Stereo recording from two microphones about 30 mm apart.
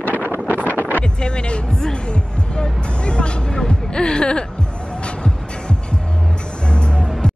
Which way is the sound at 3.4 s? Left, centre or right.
Left.